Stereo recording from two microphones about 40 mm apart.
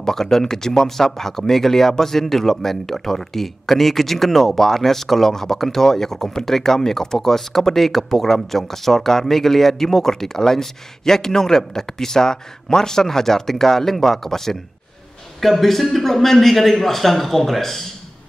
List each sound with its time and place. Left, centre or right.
0.0 s a man's voice: centre